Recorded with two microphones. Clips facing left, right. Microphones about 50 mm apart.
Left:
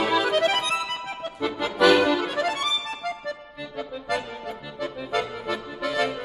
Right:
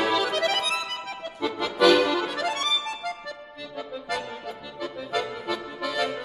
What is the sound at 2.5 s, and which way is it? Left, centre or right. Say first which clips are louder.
Music: left 1 dB; centre.